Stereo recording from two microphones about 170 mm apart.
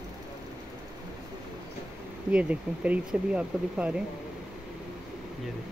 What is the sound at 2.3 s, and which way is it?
Speech, 10° right (ahead or behind).